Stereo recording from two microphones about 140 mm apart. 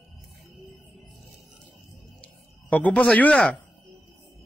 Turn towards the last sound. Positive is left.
turn(degrees=10)  # may be behind; listen again after turning